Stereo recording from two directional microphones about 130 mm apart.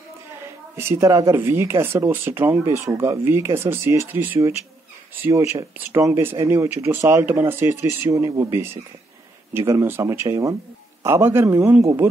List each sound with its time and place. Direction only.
0.7 s speech: 20° right (ahead or behind)